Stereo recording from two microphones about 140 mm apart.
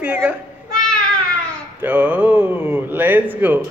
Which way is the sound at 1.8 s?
15° right (ahead or behind).